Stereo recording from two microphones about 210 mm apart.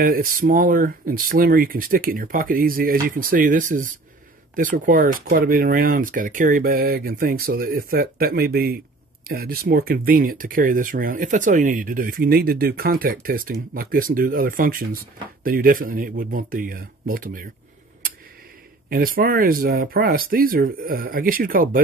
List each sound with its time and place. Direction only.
0.0 s speech: 40° right (ahead or behind)
18.9 s speech: 45° right (ahead or behind)